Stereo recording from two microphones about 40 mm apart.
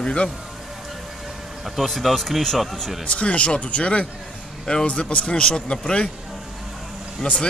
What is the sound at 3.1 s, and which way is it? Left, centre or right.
Speech, left.